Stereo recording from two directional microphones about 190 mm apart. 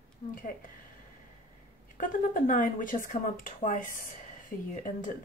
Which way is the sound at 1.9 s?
45° left (ahead or behind).